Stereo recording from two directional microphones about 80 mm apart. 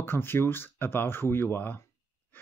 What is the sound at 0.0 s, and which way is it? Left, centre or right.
Speech, left.